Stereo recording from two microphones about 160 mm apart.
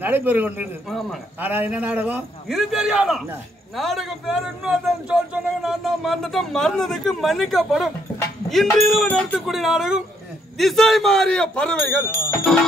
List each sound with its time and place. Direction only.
0.0 s a man's voice: 10° right (ahead or behind); by 9.4 s 10° left (ahead or behind)
9.5 s a man's voice: centre (ahead or behind)
12.1 s music: 15° left (ahead or behind)